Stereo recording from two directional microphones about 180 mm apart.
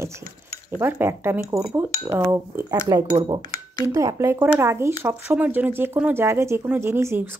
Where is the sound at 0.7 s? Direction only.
10° right (ahead or behind).